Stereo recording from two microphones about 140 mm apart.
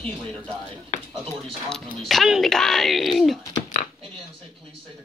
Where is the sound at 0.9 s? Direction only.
60° left (ahead or behind).